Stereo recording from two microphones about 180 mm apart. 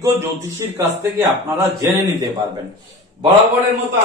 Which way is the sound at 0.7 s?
15° right (ahead or behind).